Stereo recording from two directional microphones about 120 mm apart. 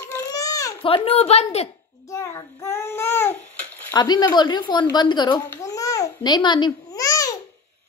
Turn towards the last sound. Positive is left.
turn(degrees=30)  # may be behind; listen again after turning